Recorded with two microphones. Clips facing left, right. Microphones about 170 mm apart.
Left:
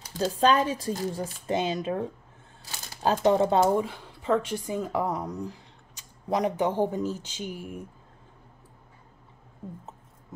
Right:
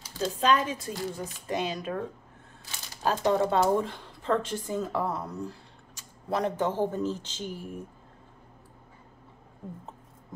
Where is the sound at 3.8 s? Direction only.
5° left (ahead or behind).